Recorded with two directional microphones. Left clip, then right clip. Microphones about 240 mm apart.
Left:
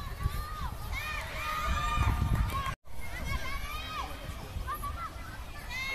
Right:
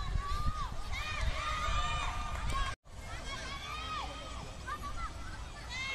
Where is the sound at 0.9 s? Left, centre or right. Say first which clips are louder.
Left 2 dB; centre.